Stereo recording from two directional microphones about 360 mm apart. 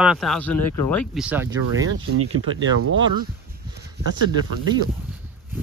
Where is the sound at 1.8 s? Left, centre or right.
Right.